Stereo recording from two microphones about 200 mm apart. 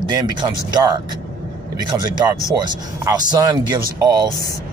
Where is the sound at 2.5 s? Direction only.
20° right (ahead or behind).